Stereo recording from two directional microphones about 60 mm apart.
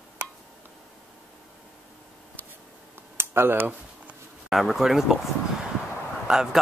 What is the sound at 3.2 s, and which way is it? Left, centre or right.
Speech, right.